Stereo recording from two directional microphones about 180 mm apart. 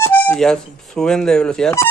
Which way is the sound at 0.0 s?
10° left (ahead or behind).